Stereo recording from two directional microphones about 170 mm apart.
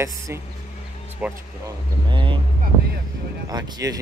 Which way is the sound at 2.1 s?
30° right (ahead or behind).